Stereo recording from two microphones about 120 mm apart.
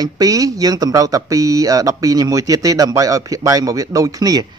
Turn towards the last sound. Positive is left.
turn(degrees=-30)  # may be behind; listen again after turning